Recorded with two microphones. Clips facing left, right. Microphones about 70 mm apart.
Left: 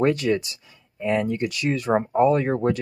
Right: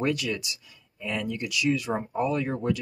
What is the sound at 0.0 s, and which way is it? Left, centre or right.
Speech, left.